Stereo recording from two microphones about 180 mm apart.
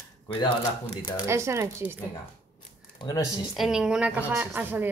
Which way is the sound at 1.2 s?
15° right (ahead or behind).